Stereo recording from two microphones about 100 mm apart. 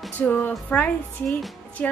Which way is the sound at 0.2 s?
15° left (ahead or behind).